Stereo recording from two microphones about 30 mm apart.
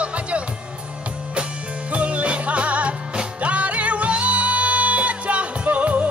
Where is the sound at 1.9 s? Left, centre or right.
Right.